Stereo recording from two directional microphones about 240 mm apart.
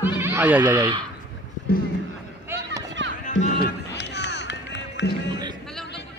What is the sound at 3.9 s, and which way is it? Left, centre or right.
Music, left.